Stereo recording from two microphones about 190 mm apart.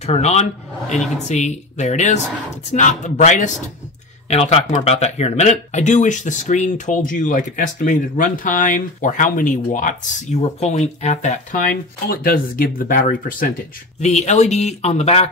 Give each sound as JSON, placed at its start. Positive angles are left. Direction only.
{"t": 0.0, "sound": "speech", "side_deg": 35}
{"t": 0.9, "sound": "a woman's voice", "side_deg": 0}
{"t": 1.2, "sound": "speech", "side_deg": 35}
{"t": 12.1, "sound": "speech", "side_deg": 50}
{"t": 14.0, "sound": "speech", "side_deg": 35}